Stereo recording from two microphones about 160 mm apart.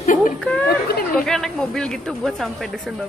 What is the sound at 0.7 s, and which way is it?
Chatter, 70° left (ahead or behind).